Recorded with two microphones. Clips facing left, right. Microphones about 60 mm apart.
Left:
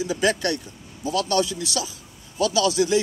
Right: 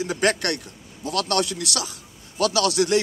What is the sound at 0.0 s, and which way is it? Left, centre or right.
A man's voice, right.